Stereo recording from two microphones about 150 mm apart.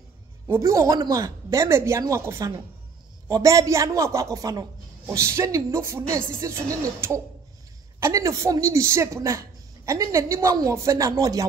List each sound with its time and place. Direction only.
0.5 s a man's voice: 20° right (ahead or behind)